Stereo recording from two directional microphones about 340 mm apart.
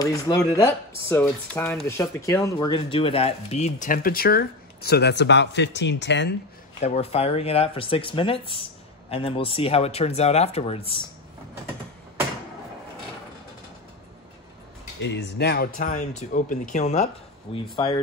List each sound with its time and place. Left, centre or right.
0.0 s speech: centre; by 6.3 s left
6.8 s speech: centre
15.3 s speech: left; by 18.0 s centre